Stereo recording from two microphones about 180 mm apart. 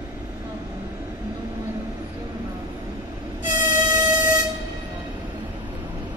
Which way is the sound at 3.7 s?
15° right (ahead or behind).